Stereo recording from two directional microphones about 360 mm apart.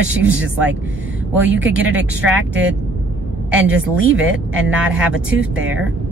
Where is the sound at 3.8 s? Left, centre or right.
Right.